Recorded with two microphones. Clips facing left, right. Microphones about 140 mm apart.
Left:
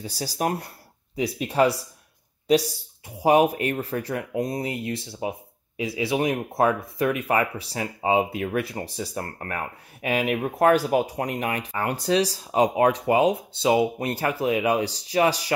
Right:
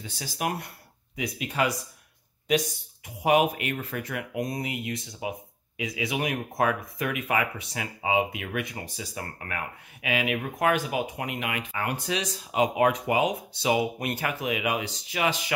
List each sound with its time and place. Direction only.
0.0 s speech: 35° left (ahead or behind)
3.2 s speech: 30° left (ahead or behind)